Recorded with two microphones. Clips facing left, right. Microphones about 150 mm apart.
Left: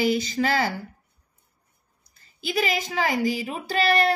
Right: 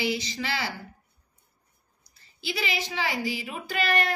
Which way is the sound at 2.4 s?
50° left (ahead or behind).